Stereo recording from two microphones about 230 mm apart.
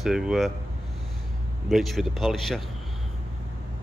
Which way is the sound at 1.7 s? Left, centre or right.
Centre.